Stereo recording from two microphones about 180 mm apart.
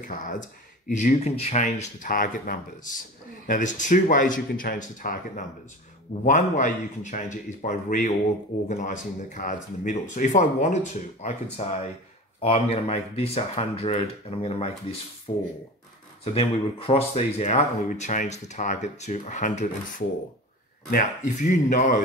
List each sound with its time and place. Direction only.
0.0 s speech: 45° left (ahead or behind)
20.9 s speech: 45° left (ahead or behind)